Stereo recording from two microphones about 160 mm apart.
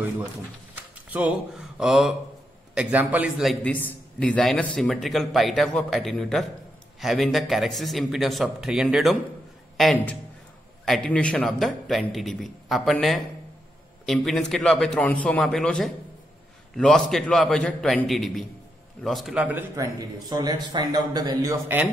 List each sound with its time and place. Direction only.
1.1 s a man's voice: 5° right (ahead or behind)
3.6 s speech: 10° left (ahead or behind); by 19.6 s 10° right (ahead or behind)
19.7 s a man's voice: 20° right (ahead or behind)